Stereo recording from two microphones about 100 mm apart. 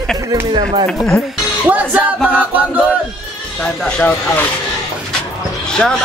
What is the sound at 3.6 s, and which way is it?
Speech, 10° left (ahead or behind).